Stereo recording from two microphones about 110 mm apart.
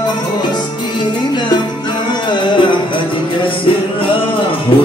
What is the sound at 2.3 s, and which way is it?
Music, 45° left (ahead or behind).